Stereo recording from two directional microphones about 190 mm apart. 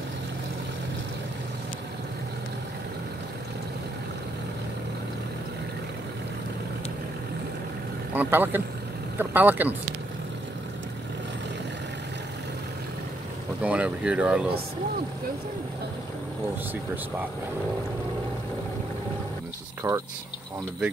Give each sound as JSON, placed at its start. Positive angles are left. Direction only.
{"t": 8.1, "sound": "speech", "side_deg": -10}
{"t": 13.6, "sound": "speech", "side_deg": -5}
{"t": 19.8, "sound": "speech", "side_deg": -15}